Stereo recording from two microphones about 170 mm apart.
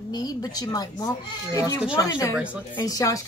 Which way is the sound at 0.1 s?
25° left (ahead or behind).